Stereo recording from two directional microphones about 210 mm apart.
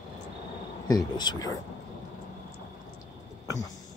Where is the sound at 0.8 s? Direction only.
20° left (ahead or behind).